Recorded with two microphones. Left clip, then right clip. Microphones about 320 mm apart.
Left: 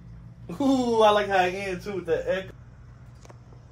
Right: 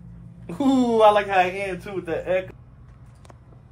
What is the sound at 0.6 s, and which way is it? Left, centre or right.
Speech, right.